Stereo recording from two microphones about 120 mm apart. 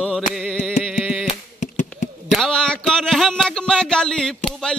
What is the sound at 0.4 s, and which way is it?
Music, 5° left (ahead or behind).